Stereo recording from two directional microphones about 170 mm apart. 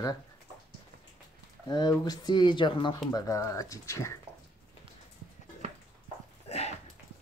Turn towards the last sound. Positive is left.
turn(degrees=40)  # may be behind; listen again after turning